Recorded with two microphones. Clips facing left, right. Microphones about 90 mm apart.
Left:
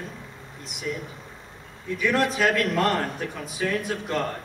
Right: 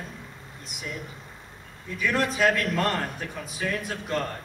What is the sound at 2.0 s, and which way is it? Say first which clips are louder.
A man's voice: left 1 dB; centre (ahead or behind).